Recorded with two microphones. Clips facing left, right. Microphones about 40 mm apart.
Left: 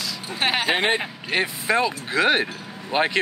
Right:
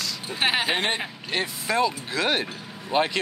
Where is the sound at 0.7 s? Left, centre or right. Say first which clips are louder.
Left 4 dB; centre.